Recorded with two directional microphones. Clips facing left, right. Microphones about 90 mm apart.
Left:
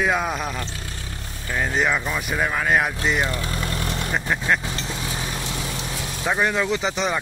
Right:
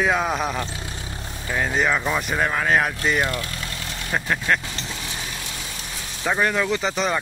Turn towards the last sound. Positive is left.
turn(degrees=5)  # may be behind; listen again after turning